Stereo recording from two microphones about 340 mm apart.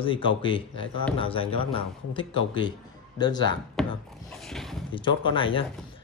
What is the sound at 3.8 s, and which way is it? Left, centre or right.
Wood, centre.